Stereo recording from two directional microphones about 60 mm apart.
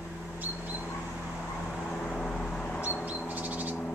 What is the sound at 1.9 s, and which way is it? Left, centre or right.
Vehicle, centre.